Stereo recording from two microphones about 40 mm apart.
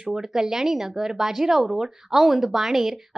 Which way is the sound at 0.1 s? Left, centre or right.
Centre.